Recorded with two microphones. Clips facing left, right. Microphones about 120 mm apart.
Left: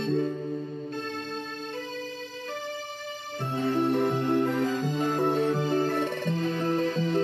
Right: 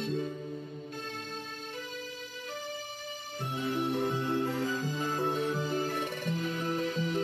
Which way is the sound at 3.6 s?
60° left (ahead or behind).